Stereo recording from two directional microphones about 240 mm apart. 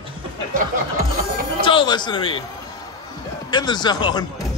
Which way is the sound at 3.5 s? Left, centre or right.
Centre.